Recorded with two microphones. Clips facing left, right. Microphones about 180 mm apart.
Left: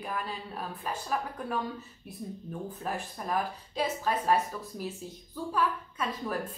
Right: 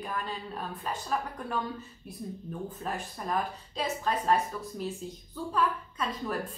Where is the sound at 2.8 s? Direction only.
5° left (ahead or behind).